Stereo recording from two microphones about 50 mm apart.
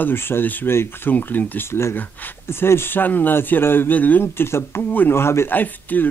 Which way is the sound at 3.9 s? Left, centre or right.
Left.